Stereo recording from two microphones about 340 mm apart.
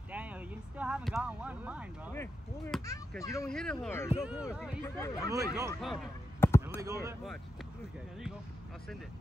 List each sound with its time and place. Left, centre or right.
0.1 s speech: centre
2.1 s speech: centre
5.3 s speech: centre
5.7 s basketball bounce: centre
6.8 s speech: centre